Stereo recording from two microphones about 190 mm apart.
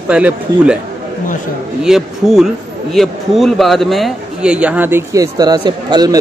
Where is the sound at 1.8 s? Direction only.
Centre (ahead or behind).